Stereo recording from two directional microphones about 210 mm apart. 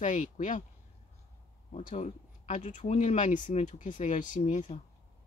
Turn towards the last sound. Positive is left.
turn(degrees=35)  # may be behind; listen again after turning